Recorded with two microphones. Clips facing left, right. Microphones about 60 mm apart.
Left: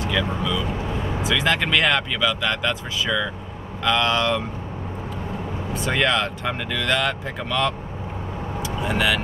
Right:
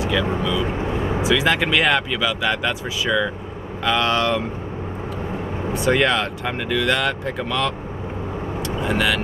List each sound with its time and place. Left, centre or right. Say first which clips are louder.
0.0 s speech: right 3 dB; centre
5.8 s speech: right 3 dB; centre